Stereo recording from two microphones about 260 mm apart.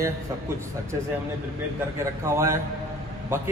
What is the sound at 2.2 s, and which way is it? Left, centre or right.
Speech, centre.